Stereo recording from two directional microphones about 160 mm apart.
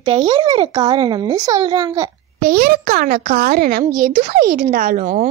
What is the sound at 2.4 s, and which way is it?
A child's voice, 70° right (ahead or behind).